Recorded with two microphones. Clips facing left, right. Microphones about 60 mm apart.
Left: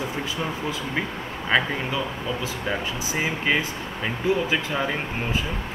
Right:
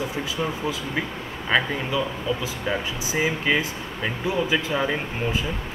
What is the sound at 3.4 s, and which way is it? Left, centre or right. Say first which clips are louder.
Speech: even; centre.